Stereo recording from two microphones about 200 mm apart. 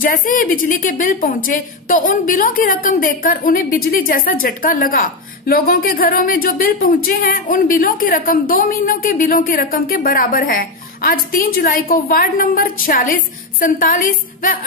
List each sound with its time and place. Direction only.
0.0 s a woman's voice: 40° left (ahead or behind)